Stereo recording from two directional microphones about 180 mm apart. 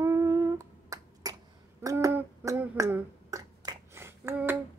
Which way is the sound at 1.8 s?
15° right (ahead or behind).